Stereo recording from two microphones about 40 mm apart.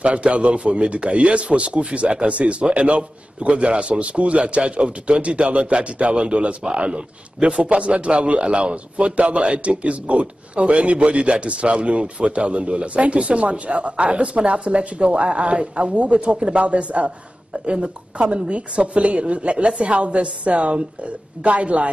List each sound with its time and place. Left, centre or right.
0.0 s a man's voice: right